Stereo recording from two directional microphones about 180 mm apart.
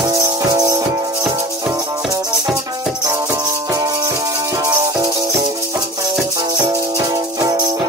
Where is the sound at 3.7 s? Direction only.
20° right (ahead or behind).